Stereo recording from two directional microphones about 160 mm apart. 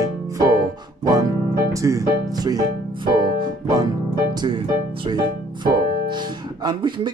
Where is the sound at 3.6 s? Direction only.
25° right (ahead or behind).